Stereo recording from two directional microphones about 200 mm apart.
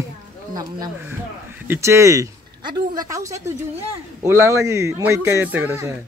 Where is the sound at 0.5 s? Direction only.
20° right (ahead or behind).